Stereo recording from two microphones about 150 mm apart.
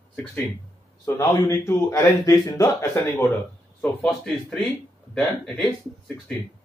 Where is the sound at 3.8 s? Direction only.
5° left (ahead or behind).